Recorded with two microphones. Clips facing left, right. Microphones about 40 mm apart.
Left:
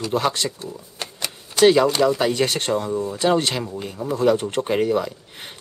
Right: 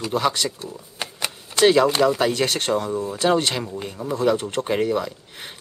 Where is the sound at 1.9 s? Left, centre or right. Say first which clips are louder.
Even; centre.